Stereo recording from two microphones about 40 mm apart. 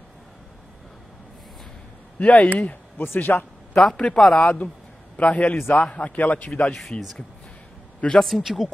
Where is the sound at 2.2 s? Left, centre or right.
Left.